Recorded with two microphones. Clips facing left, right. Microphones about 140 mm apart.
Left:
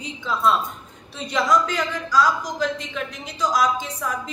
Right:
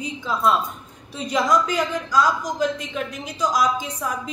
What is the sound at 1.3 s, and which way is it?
A woman's voice, 15° right (ahead or behind).